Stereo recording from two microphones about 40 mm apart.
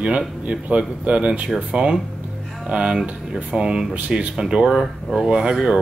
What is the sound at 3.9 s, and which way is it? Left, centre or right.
Speech, right.